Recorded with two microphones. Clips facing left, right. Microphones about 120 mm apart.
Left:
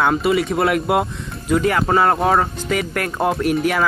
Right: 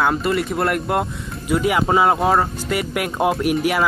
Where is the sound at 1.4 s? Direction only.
10° right (ahead or behind).